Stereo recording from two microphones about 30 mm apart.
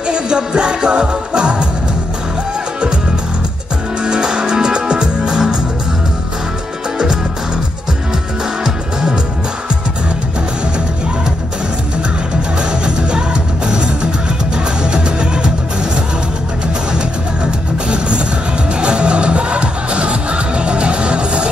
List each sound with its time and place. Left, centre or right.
0.0 s music: right
4.0 s music: right
12.8 s music: right
14.9 s music: right
17.8 s music: right